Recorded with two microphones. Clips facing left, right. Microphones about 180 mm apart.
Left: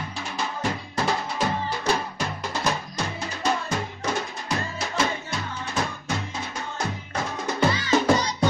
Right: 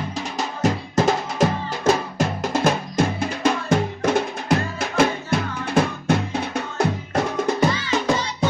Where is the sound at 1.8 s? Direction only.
50° right (ahead or behind).